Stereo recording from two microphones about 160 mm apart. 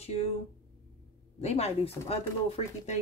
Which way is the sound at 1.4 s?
40° left (ahead or behind).